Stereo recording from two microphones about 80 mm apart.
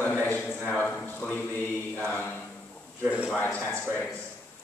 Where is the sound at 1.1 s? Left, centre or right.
Left.